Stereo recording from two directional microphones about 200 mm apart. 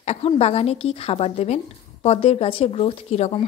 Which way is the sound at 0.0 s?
30° left (ahead or behind).